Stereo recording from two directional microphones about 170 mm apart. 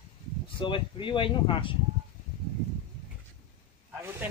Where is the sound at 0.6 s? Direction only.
30° left (ahead or behind).